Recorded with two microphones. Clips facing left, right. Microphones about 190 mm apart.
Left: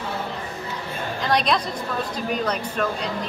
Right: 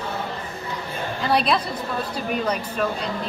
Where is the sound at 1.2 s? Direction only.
5° right (ahead or behind).